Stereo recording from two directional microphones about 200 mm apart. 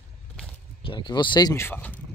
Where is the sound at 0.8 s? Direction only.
20° left (ahead or behind).